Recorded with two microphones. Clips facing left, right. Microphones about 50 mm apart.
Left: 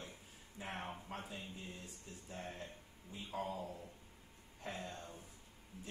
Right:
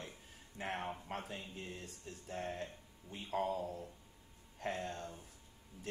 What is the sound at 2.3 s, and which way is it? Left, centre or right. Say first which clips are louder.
Speech: right 6 dB; right.